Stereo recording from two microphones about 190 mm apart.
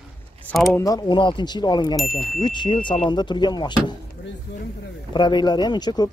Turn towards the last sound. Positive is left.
turn(degrees=20)  # may be behind; listen again after turning